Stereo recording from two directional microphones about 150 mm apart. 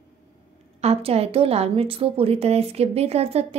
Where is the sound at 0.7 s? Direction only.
45° right (ahead or behind).